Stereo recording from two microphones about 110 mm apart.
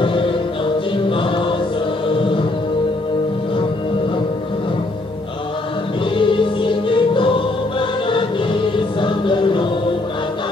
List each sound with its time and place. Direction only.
0.0 s music: 50° left (ahead or behind)
1.1 s choir: 50° left (ahead or behind)
2.1 s music: 50° left (ahead or behind)
6.1 s music: 50° left (ahead or behind)
8.7 s music: 50° left (ahead or behind)